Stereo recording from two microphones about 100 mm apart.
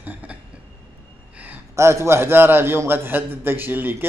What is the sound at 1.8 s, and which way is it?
A man's voice, 25° right (ahead or behind).